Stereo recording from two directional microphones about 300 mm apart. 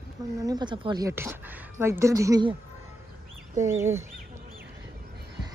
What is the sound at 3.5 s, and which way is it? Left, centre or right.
Speech, centre.